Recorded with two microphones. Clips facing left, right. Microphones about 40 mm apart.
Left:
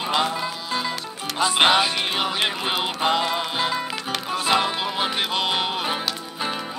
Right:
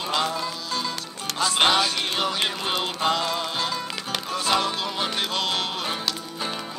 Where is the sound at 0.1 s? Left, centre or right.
Centre.